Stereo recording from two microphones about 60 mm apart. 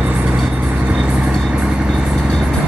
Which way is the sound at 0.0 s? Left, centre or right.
Right.